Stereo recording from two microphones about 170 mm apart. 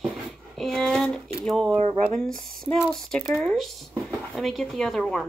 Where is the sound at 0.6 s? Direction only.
Centre (ahead or behind).